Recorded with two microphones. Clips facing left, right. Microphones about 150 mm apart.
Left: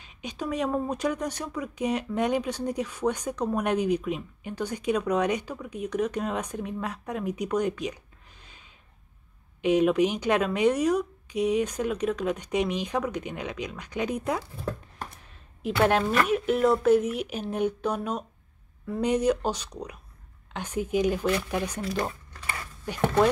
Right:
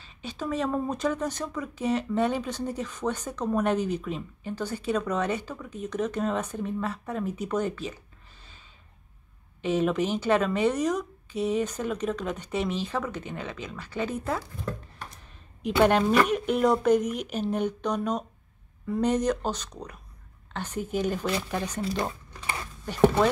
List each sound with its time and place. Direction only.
0.0 s speech: 15° left (ahead or behind)
9.6 s speech: 10° left (ahead or behind)
16.1 s speech: centre (ahead or behind)
22.3 s a sound: 20° right (ahead or behind)